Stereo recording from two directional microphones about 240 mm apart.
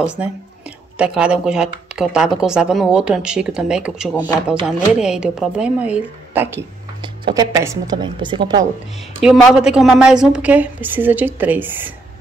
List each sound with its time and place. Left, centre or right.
0.0 s a woman's voice: centre
9.2 s a woman's voice: centre